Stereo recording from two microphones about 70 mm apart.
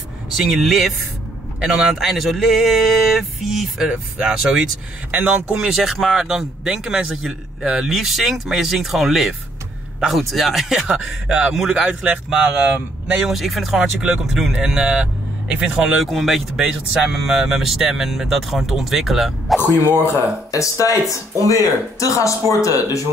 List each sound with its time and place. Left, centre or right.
0.4 s a man's voice: centre
5.1 s speech: right
5.6 s a man's voice: centre
12.4 s speech: right
13.2 s speech: centre
16.0 s a man's voice: centre
19.6 s a man's voice: left
20.5 s speech: left